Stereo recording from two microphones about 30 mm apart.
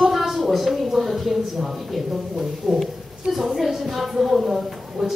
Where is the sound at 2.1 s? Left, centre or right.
Centre.